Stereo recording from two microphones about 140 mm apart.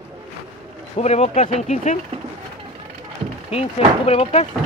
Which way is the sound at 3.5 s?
45° left (ahead or behind).